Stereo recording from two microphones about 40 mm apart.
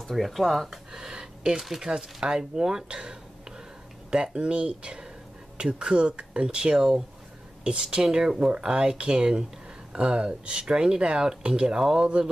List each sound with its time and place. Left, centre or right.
0.1 s speech: centre
0.7 s a sound: centre
1.8 s speech: centre